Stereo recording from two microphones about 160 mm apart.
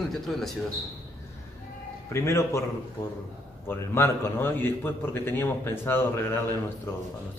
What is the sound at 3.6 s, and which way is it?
A man's voice, 15° left (ahead or behind).